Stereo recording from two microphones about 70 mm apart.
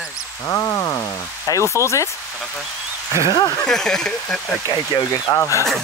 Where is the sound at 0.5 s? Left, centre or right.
Left.